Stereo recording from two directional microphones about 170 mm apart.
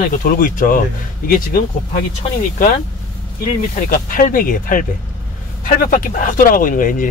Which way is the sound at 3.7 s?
50° left (ahead or behind).